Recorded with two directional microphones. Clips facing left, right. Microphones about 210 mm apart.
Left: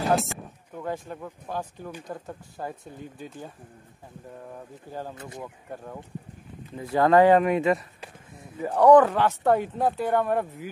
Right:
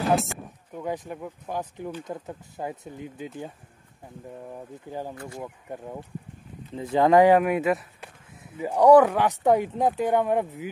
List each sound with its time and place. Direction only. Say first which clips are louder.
0.1 s a sound: even; centre (ahead or behind)
0.8 s speech: right 1 dB; 15° right (ahead or behind)
5.1 s speech: right 2 dB; 20° left (ahead or behind)
5.4 s speech: right 2 dB; 15° right (ahead or behind)